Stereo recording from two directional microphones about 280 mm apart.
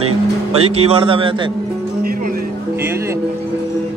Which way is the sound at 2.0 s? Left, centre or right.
Right.